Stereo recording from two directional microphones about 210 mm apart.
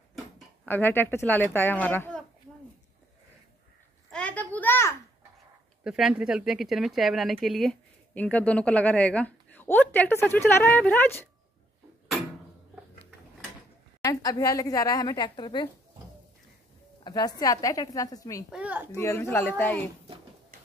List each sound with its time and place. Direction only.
0.7 s speech: 10° left (ahead or behind)
4.1 s a sound: 5° left (ahead or behind)
5.9 s speech: centre (ahead or behind)
14.0 s speech: 20° left (ahead or behind)
17.0 s a woman's voice: 20° left (ahead or behind)
18.5 s a child's voice: 5° right (ahead or behind)
18.9 s speech: 15° left (ahead or behind)